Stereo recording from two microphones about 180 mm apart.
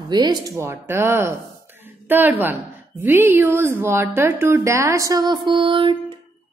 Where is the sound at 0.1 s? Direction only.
25° right (ahead or behind).